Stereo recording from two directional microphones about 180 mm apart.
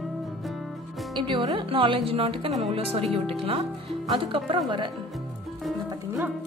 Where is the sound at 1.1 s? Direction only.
25° right (ahead or behind).